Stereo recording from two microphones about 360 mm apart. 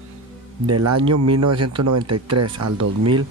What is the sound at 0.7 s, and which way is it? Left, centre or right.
Speech, right.